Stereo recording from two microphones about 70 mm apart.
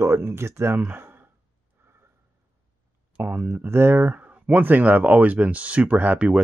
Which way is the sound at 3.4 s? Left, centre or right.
Right.